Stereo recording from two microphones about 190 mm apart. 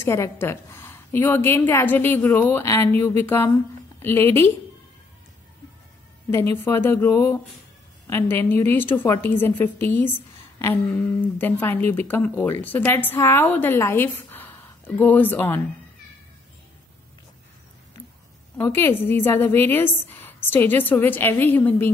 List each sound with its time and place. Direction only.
0.0 s a woman's voice: 15° left (ahead or behind)
6.3 s a woman's voice: 10° left (ahead or behind)
18.6 s a woman's voice: 10° left (ahead or behind)